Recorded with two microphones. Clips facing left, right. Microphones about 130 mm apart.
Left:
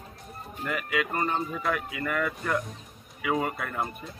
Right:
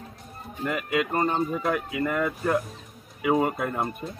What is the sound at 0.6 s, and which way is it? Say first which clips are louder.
Speech: right 3 dB; 25° right (ahead or behind).